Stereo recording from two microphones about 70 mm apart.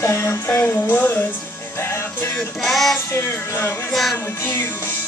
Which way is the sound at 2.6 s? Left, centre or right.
Centre.